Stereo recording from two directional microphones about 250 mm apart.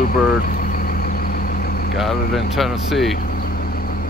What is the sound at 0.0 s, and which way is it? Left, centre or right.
Vehicle, left.